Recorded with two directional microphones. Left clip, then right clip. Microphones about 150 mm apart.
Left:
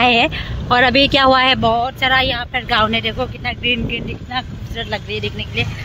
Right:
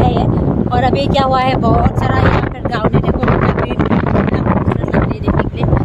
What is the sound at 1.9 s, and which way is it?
Speech, 15° right (ahead or behind).